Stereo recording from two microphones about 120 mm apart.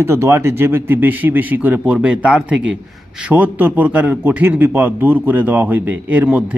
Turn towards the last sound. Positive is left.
turn(degrees=-10)  # may be behind; listen again after turning